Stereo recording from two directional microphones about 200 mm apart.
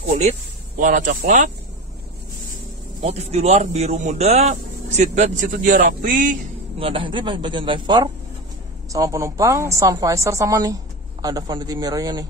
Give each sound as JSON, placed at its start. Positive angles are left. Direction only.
{"t": 0.7, "sound": "speech", "side_deg": -40}
{"t": 3.0, "sound": "speech", "side_deg": -30}
{"t": 5.5, "sound": "speech", "side_deg": -45}
{"t": 6.8, "sound": "a woman's voice", "side_deg": -25}